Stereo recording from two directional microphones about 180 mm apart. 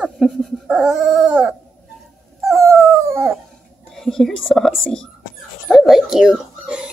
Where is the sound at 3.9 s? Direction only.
Centre (ahead or behind).